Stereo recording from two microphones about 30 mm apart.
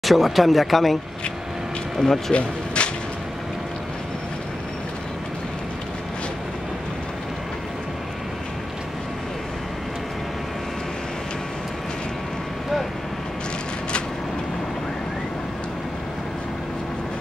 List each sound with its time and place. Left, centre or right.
0.0 s speech: centre
2.0 s speech: centre
2.3 s a sound: left